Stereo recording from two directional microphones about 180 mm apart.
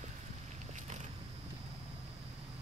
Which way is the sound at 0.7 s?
45° right (ahead or behind).